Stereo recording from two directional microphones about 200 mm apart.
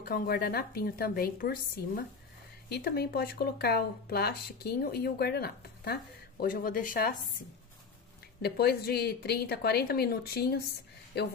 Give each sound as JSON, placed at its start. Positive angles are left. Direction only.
{"t": 0.0, "sound": "speech", "side_deg": 50}
{"t": 8.4, "sound": "speech", "side_deg": 50}